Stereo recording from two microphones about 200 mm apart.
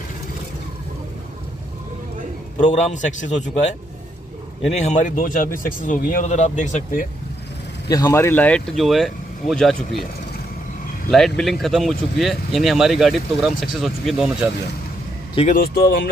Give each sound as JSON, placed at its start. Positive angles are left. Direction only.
{"t": 2.6, "sound": "speech", "side_deg": 35}
{"t": 7.9, "sound": "speech", "side_deg": 15}
{"t": 11.1, "sound": "speech", "side_deg": 0}
{"t": 15.5, "sound": "speech", "side_deg": 50}